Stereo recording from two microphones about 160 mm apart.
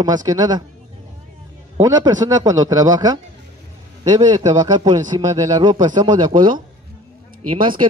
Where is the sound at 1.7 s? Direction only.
20° right (ahead or behind).